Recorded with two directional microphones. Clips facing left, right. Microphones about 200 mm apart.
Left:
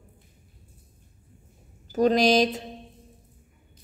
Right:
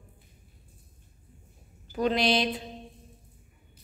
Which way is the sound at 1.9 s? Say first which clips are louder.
Left 6 dB; 40° left (ahead or behind).